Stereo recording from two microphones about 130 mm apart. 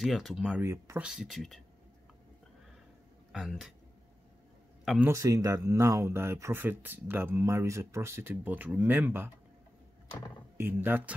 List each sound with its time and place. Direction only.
0.0 s speech: centre (ahead or behind)
0.6 s speech: 20° right (ahead or behind)
1.0 s speech: 5° right (ahead or behind)
3.3 s speech: 5° right (ahead or behind)
5.0 s speech: 25° right (ahead or behind)
10.6 s speech: 15° right (ahead or behind)